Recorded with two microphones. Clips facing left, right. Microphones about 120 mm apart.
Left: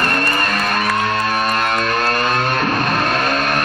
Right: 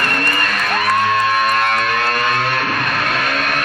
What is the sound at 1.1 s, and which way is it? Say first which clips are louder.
Music: right 3 dB; 35° left (ahead or behind).